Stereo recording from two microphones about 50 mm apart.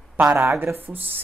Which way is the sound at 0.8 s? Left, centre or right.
Right.